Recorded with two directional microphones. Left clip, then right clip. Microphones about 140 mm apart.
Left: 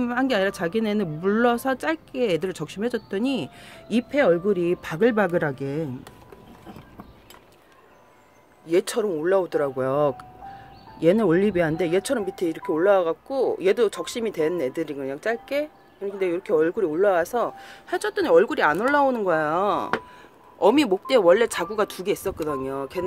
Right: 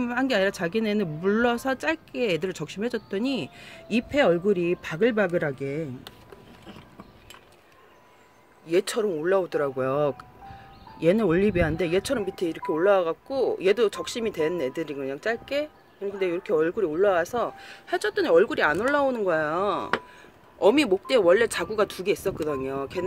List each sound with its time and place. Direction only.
0.0 s speech: 5° right (ahead or behind)
4.1 s speech: 15° right (ahead or behind)
4.6 s speech: centre (ahead or behind)
8.6 s speech: centre (ahead or behind)
20.5 s speech: 5° left (ahead or behind)